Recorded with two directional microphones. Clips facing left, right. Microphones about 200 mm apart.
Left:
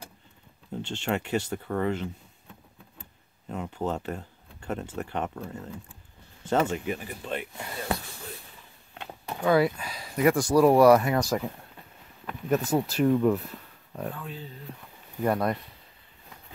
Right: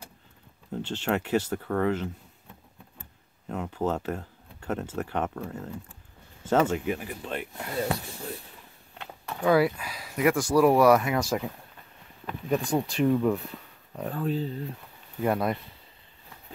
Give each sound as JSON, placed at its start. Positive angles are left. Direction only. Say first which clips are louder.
{"t": 0.7, "sound": "speech", "louder": "right 1 dB", "side_deg": -5}
{"t": 3.4, "sound": "speech", "louder": "right 2 dB", "side_deg": 0}
{"t": 9.0, "sound": "a sound", "louder": "left 1 dB", "side_deg": 20}
{"t": 9.4, "sound": "speech", "louder": "even", "side_deg": -5}
{"t": 14.1, "sound": "speech", "louder": "right 11 dB", "side_deg": -40}
{"t": 15.2, "sound": "speech", "louder": "even", "side_deg": 0}